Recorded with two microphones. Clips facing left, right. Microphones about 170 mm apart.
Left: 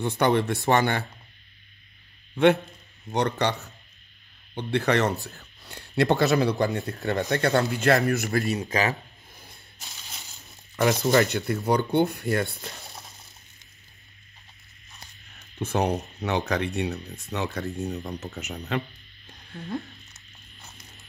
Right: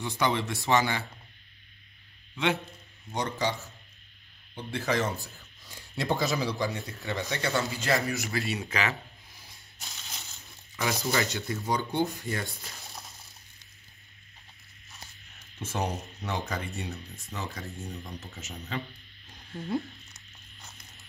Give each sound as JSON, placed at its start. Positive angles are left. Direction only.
{"t": 0.2, "sound": "speech", "side_deg": 55}
{"t": 2.3, "sound": "a man's voice", "side_deg": 55}
{"t": 9.3, "sound": "ratchet", "side_deg": 55}
{"t": 10.8, "sound": "speech", "side_deg": 55}
{"t": 15.6, "sound": "speech", "side_deg": 60}
{"t": 19.7, "sound": "a sound", "side_deg": 0}